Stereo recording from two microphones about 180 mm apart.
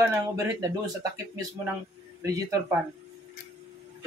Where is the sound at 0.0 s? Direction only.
15° right (ahead or behind).